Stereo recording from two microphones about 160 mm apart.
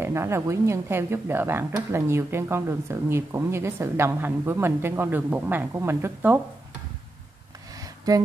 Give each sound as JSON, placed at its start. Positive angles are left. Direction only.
{"t": 0.0, "sound": "speech", "side_deg": -15}